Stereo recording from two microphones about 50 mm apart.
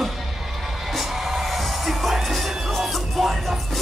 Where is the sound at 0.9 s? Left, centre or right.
Centre.